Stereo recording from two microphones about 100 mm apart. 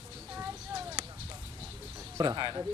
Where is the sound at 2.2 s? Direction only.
45° right (ahead or behind).